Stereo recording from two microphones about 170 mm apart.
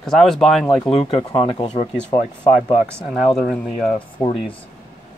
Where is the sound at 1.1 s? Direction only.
30° left (ahead or behind).